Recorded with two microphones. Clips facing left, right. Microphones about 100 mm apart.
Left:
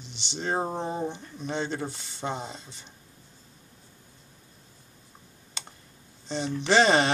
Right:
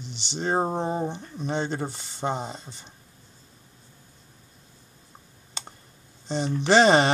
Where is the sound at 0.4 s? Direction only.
35° right (ahead or behind).